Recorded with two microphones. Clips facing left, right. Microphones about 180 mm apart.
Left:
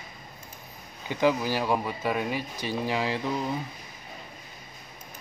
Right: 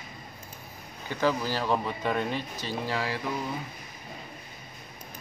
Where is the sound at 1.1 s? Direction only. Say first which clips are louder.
Left 3 dB; 15° left (ahead or behind).